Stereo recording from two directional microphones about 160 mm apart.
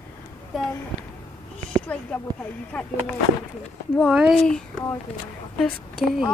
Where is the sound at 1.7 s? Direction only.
5° left (ahead or behind).